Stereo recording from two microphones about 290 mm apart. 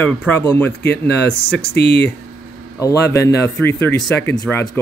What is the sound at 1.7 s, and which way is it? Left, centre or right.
Speech, left.